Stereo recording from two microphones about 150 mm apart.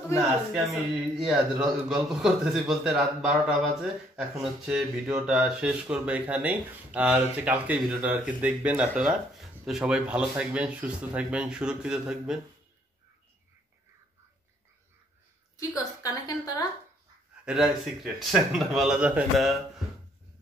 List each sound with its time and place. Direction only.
0.7 s a man's voice: centre (ahead or behind)
15.5 s a woman's voice: 25° left (ahead or behind)
17.5 s a man's voice: 5° right (ahead or behind)